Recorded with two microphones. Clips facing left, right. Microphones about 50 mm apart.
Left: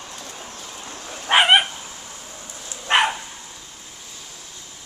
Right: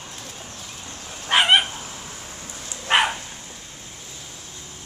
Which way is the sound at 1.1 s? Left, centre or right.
Centre.